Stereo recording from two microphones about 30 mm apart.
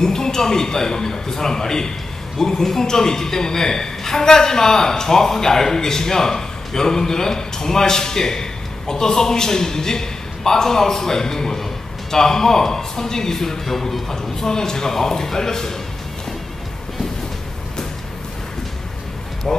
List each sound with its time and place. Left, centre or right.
0.0 s a man's voice: centre